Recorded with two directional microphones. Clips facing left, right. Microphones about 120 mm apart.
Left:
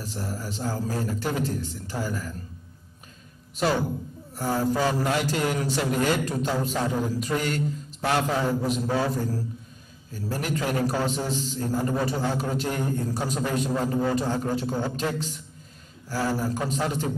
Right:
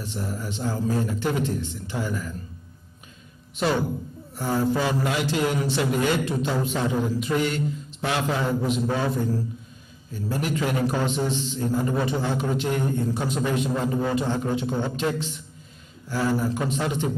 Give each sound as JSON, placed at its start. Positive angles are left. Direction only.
{"t": 0.0, "sound": "a man's voice", "side_deg": 40}
{"t": 3.6, "sound": "a man's voice", "side_deg": 40}